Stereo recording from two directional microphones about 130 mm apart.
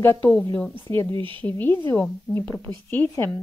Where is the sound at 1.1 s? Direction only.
40° right (ahead or behind).